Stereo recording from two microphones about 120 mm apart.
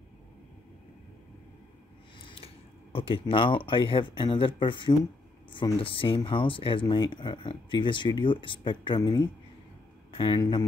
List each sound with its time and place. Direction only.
2.1 s speech: 45° left (ahead or behind)